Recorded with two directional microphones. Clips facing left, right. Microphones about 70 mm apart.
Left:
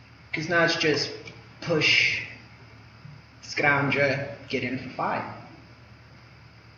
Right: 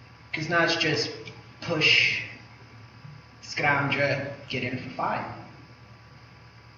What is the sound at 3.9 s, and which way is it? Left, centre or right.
Speech, left.